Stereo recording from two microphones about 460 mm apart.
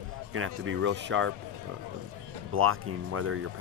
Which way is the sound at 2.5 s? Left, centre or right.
Right.